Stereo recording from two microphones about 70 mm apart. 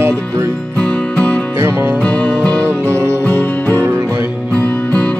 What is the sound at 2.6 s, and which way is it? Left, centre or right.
Music, right.